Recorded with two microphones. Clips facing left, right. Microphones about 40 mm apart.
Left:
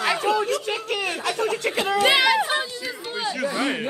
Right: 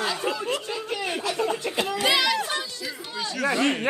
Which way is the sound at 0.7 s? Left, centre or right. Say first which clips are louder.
Left 3 dB; left.